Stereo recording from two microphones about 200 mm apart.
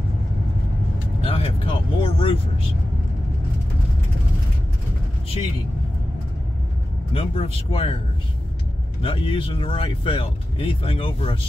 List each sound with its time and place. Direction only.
1.2 s speech: 30° left (ahead or behind)
7.2 s speech: 30° left (ahead or behind)
9.0 s speech: 25° left (ahead or behind)